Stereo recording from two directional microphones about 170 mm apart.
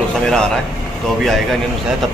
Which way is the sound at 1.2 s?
Centre (ahead or behind).